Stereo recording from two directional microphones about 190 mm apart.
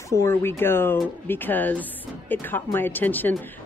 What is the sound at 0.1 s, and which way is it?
A woman's voice, 15° left (ahead or behind).